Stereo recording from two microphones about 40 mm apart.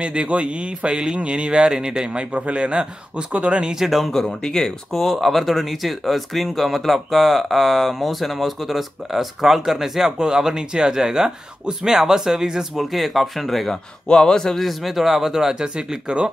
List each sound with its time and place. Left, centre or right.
0.0 s speech: right
3.7 s speech: centre
4.0 s speech: centre
12.8 s speech: centre
14.0 s speech: centre
14.6 s speech: centre; by 16.2 s right